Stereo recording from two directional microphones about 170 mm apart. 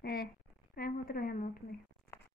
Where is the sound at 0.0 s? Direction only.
60° left (ahead or behind).